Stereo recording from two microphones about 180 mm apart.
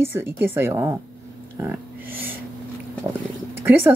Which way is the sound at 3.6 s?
10° right (ahead or behind).